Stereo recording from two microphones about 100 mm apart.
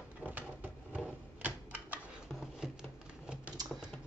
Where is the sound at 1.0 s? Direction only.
15° right (ahead or behind).